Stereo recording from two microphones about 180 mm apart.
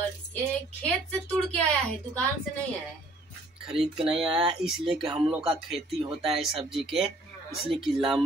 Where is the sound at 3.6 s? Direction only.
Centre (ahead or behind).